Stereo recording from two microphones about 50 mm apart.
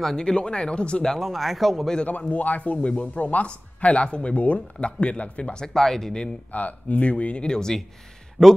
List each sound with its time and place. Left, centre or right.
0.0 s speech: centre
1.2 s speech: centre
2.0 s speech: left
5.7 s a man's voice: centre
6.2 s speech: left; by 7.8 s centre